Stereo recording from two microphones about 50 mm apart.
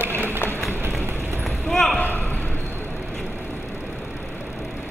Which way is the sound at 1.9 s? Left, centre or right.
Left.